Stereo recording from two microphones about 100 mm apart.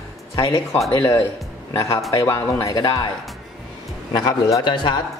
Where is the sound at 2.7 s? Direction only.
45° left (ahead or behind).